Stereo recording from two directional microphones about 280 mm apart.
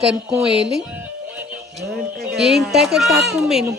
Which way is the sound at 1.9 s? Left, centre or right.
Centre.